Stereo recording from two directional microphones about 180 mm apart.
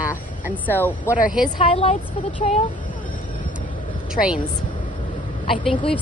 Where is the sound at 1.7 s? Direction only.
30° left (ahead or behind).